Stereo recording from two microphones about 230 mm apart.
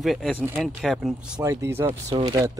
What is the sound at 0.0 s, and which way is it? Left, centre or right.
Speech, centre.